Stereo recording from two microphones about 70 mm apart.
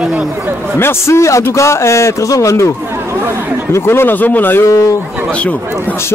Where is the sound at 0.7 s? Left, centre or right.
Left.